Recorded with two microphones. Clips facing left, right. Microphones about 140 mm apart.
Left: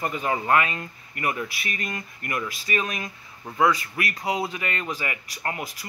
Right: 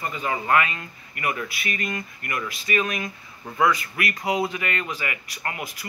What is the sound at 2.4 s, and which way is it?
Speech, 35° left (ahead or behind).